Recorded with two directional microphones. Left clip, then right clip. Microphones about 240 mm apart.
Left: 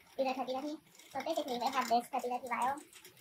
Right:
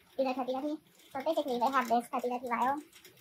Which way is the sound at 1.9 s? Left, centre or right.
Centre.